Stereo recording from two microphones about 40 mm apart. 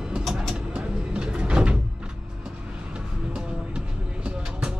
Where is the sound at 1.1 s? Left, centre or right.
Right.